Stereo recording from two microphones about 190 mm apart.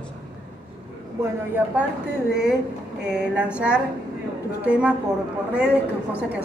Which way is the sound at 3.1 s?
5° right (ahead or behind).